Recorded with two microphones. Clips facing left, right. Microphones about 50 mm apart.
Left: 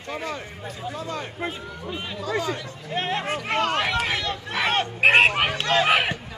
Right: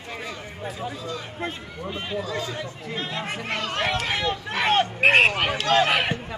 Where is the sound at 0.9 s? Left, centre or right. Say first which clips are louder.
Left 2 dB; left.